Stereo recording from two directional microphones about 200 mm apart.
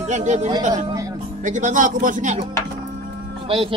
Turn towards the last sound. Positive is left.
turn(degrees=-25)  # may be behind; listen again after turning